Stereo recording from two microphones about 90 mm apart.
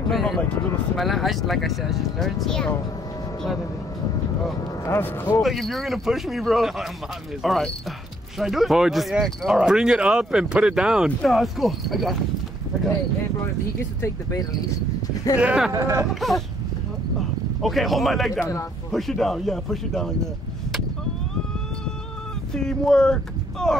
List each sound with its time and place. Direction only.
0.1 s speech: centre (ahead or behind)
4.8 s a man's voice: 25° left (ahead or behind)
5.4 s speech: centre (ahead or behind)
15.3 s speech: 15° right (ahead or behind)
15.7 s speech: 35° right (ahead or behind)
16.2 s speech: centre (ahead or behind)
17.6 s speech: centre (ahead or behind)
22.5 s speech: 5° left (ahead or behind)